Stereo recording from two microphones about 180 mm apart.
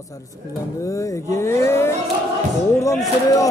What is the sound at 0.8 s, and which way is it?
Speech, 15° left (ahead or behind).